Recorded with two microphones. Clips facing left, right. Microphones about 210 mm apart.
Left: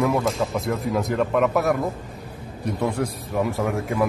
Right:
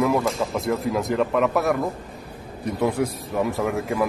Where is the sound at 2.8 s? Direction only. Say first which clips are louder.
Right 3 dB; 5° right (ahead or behind).